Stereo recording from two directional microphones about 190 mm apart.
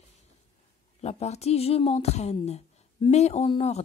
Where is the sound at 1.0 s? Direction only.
35° left (ahead or behind).